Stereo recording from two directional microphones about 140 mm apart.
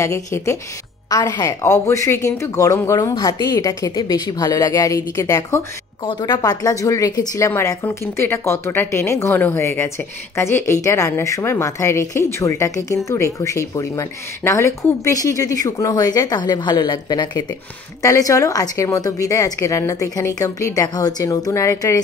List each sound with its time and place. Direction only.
0.0 s speech: 20° left (ahead or behind)
6.0 s speech: 30° left (ahead or behind)